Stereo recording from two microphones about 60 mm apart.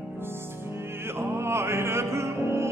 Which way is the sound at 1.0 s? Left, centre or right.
Right.